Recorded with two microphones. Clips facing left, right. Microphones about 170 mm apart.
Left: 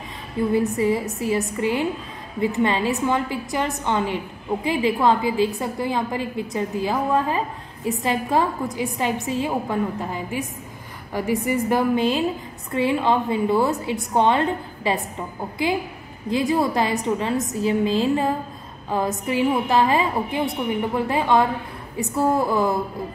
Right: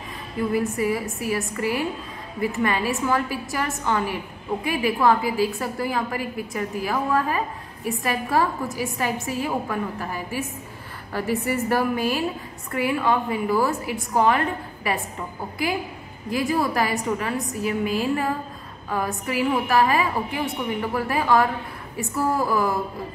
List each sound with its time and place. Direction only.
0.4 s a woman's voice: 25° left (ahead or behind)
16.3 s a woman's voice: 25° left (ahead or behind)